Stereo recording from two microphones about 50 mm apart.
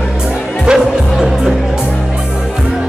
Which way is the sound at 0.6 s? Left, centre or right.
Centre.